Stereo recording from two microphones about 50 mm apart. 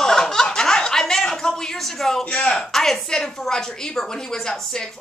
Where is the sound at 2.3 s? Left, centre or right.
Centre.